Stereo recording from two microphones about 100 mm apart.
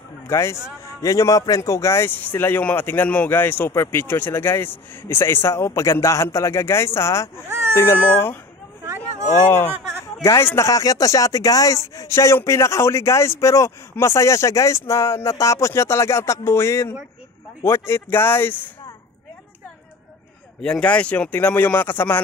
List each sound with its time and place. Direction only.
0.3 s speech: 30° left (ahead or behind)
7.4 s baby cry: 25° right (ahead or behind)
7.7 s speech: 25° left (ahead or behind)
10.2 s speech: 25° left (ahead or behind)
20.6 s speech: 10° left (ahead or behind)